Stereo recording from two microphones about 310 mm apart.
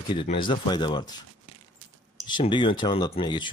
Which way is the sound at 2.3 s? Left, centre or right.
Centre.